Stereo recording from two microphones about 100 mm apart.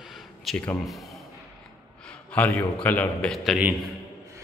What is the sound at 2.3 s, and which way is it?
Speech, 15° left (ahead or behind).